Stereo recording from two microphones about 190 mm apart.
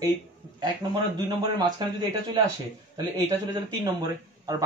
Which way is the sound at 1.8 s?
20° right (ahead or behind).